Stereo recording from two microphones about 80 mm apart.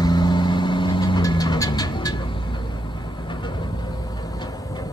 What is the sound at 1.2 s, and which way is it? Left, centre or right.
Music, left.